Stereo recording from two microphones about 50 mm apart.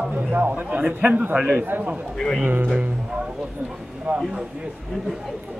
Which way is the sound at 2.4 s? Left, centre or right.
Right.